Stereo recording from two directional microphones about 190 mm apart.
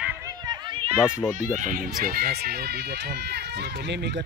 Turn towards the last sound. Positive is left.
turn(degrees=-65)  # may be behind; listen again after turning